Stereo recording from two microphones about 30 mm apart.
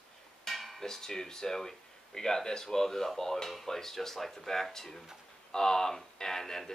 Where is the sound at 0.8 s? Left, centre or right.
Centre.